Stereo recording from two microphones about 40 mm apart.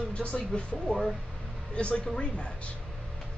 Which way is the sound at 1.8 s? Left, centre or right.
Left.